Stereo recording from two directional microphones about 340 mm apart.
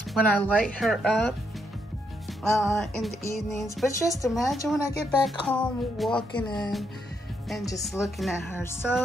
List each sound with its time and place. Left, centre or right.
0.1 s a woman's voice: centre
2.5 s a woman's voice: centre